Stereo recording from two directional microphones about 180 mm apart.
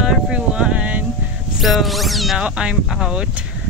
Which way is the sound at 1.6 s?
Centre (ahead or behind).